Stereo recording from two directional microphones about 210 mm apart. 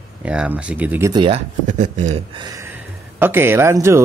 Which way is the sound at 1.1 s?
25° right (ahead or behind).